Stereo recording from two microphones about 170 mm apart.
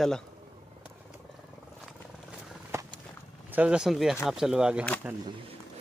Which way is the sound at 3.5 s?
5° right (ahead or behind).